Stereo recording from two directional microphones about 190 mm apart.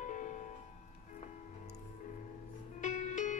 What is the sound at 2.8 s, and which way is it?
Music, 40° left (ahead or behind).